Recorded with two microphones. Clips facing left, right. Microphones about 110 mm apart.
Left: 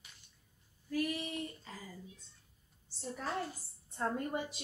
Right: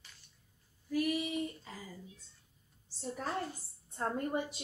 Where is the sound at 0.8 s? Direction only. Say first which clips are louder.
Right 3 dB; 10° right (ahead or behind).